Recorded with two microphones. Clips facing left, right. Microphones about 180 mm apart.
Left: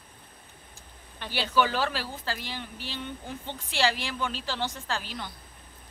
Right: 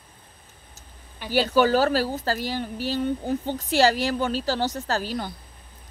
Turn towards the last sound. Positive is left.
turn(degrees=-40)  # may be behind; listen again after turning